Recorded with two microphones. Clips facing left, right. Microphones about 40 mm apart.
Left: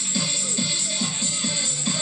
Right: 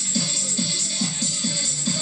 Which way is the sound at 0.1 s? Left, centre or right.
Left.